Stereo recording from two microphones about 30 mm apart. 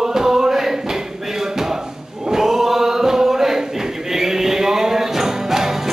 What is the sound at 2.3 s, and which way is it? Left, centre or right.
Choir, centre.